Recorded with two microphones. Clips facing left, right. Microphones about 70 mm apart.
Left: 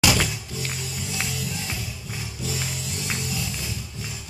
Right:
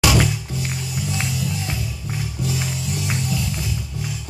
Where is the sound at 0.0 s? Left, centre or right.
Centre.